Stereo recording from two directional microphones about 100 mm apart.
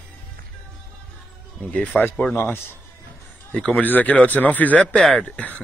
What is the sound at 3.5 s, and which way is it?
Speech, 10° left (ahead or behind).